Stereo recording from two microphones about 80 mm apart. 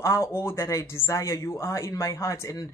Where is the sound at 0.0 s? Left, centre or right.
Left.